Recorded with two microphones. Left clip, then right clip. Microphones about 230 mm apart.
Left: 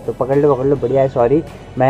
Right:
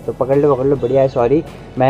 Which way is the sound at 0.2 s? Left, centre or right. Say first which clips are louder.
Right 1 dB; centre.